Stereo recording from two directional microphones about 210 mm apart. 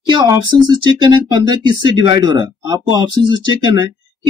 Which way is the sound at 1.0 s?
20° right (ahead or behind).